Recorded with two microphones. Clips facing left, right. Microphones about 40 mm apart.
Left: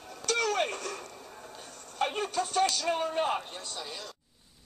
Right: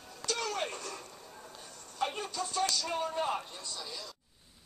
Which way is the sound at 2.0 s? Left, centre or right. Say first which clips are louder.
Left 5 dB; left.